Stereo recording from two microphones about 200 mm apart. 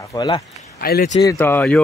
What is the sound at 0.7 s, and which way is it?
Speech, 50° left (ahead or behind).